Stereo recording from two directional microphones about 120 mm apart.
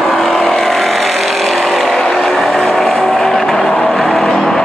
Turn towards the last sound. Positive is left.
turn(degrees=5)  # may be behind; listen again after turning